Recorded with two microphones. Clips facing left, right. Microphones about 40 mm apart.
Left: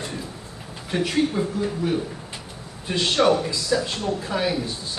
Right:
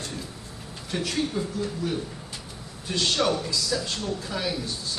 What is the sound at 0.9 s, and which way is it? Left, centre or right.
Speech, centre.